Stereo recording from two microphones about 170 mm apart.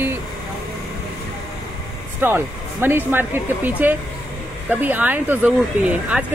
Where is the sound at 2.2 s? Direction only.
15° right (ahead or behind).